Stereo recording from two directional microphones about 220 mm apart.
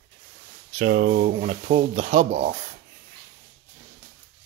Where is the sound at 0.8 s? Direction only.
40° right (ahead or behind).